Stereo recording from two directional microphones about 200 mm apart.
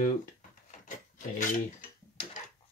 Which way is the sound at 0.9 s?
40° left (ahead or behind).